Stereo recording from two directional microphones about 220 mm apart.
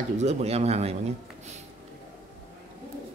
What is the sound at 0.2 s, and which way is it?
Speech, 30° right (ahead or behind).